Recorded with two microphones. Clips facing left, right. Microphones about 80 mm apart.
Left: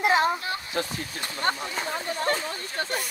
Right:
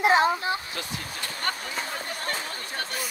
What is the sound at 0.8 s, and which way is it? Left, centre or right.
Speech, left.